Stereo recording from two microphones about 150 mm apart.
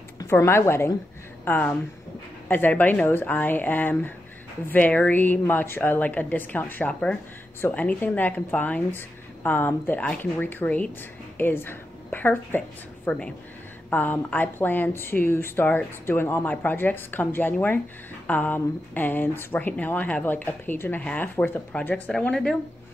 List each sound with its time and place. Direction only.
0.2 s speech: 20° left (ahead or behind)